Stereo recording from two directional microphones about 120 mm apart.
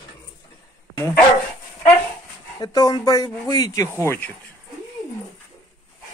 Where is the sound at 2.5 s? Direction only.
35° left (ahead or behind).